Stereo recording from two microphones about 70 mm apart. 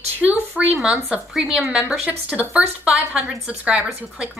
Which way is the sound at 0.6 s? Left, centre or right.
Centre.